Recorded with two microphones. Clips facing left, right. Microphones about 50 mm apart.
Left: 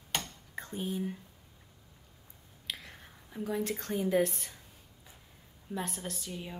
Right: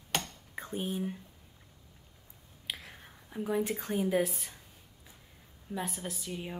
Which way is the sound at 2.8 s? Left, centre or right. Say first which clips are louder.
Even; centre.